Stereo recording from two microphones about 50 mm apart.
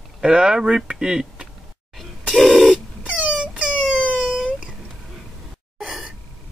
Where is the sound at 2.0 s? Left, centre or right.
Centre.